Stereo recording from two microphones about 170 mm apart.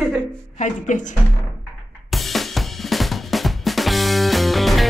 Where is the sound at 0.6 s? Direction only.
45° left (ahead or behind).